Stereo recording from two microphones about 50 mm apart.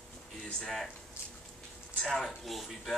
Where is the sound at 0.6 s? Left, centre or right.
Centre.